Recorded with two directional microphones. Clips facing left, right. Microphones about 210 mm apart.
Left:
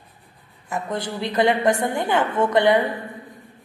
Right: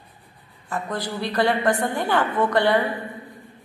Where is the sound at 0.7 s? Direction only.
20° left (ahead or behind).